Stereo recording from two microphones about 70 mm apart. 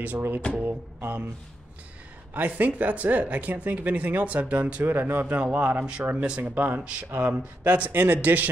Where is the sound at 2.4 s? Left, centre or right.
Right.